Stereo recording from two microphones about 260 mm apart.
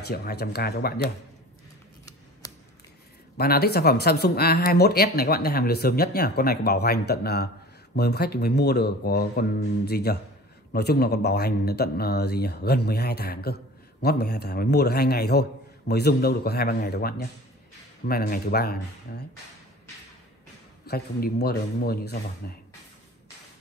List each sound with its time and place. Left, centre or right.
0.0 s speech: left
3.3 s speech: left
20.8 s speech: left